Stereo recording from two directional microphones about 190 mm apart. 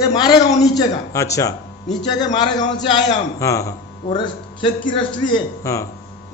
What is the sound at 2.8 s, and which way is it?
A man's voice, 20° left (ahead or behind).